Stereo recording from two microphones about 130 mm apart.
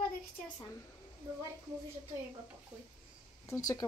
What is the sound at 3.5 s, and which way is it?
Speech, 30° left (ahead or behind).